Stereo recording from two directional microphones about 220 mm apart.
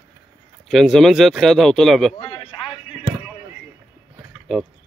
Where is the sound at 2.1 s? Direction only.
25° left (ahead or behind).